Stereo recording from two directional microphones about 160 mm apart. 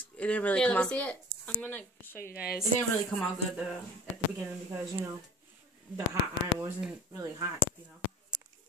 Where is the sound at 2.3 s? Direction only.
70° left (ahead or behind).